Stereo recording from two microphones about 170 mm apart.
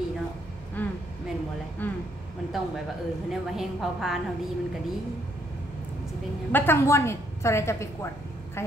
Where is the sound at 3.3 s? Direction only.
Centre (ahead or behind).